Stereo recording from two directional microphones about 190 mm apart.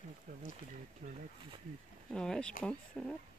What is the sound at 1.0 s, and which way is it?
Speech, 40° right (ahead or behind).